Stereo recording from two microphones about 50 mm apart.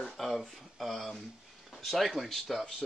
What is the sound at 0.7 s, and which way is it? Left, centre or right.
Speech, centre.